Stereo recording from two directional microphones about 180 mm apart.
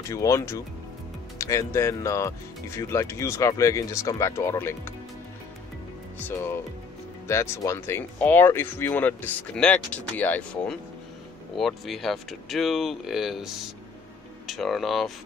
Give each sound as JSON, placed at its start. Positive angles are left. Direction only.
{"t": 0.1, "sound": "speech", "side_deg": 15}
{"t": 7.2, "sound": "speech", "side_deg": 15}